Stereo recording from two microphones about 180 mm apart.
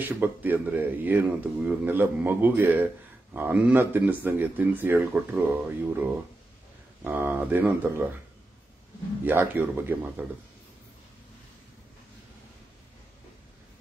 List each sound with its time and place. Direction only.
0.0 s speech: 10° right (ahead or behind)
9.2 s speech: 10° right (ahead or behind)